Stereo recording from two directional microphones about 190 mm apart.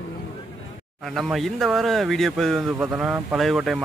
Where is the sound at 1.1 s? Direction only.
Centre (ahead or behind).